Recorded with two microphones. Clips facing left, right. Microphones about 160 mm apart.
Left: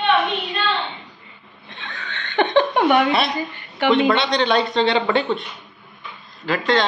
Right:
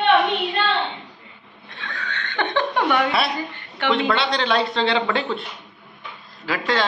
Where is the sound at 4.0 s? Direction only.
20° left (ahead or behind).